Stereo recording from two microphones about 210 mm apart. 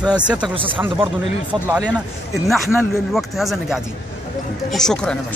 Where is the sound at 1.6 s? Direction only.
5° right (ahead or behind).